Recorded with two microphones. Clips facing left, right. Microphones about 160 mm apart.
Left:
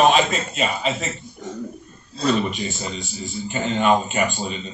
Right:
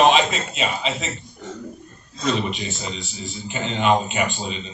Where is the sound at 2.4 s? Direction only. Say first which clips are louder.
Left 1 dB; 45° left (ahead or behind).